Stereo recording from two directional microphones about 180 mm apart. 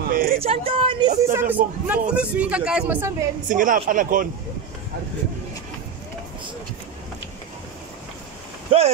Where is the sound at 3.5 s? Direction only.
50° right (ahead or behind).